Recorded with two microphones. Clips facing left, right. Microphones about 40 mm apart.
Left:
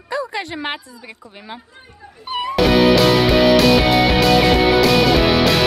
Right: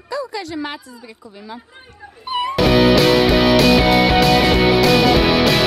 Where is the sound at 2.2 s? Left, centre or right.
Centre.